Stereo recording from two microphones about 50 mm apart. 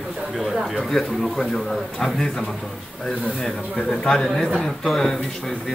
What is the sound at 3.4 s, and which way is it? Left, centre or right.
Speech, centre.